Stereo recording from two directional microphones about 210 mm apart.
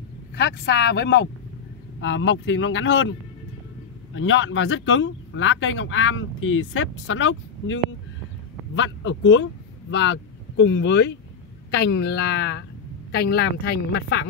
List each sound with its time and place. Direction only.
0.4 s speech: 55° left (ahead or behind)